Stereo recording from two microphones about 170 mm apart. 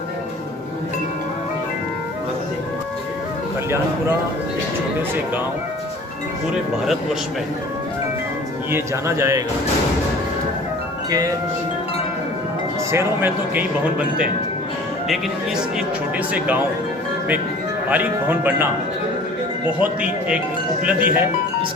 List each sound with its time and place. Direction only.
8.7 s speech: 15° right (ahead or behind)
11.1 s speech: 20° right (ahead or behind)
12.9 s speech: 10° right (ahead or behind)
16.3 s speech: 10° right (ahead or behind)
17.8 s speech: 10° right (ahead or behind)
19.8 s speech: 5° right (ahead or behind)